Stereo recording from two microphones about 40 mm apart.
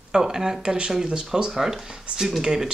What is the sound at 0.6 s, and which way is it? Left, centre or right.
Speech, right.